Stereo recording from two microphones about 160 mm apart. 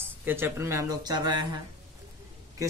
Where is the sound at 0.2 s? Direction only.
15° right (ahead or behind).